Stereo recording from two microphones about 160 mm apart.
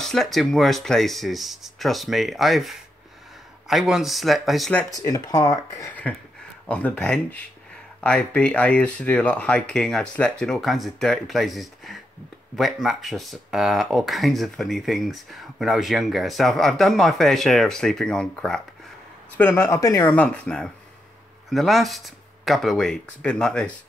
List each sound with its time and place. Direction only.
0.0 s speech: centre (ahead or behind)
4.9 s speech: 25° left (ahead or behind)
6.7 s speech: 5° left (ahead or behind)